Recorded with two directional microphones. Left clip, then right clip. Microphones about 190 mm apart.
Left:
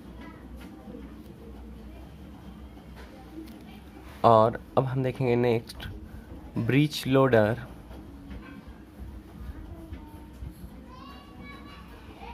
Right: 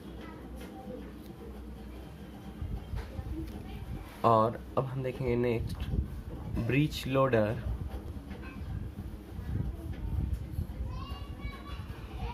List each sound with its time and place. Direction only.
4.2 s speech: 35° left (ahead or behind)